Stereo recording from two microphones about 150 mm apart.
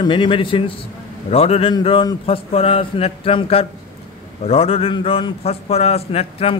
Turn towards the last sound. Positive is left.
turn(degrees=40)  # may be behind; listen again after turning